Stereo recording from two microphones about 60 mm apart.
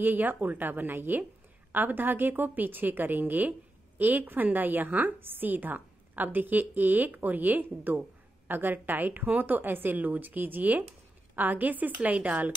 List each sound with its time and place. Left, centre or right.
0.0 s a woman's voice: right